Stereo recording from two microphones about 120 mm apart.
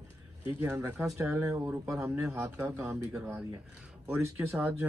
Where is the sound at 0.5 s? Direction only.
20° right (ahead or behind).